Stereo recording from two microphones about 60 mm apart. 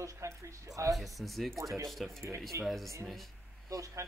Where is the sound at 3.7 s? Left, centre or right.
Right.